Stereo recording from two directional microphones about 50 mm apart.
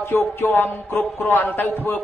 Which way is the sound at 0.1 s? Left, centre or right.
Left.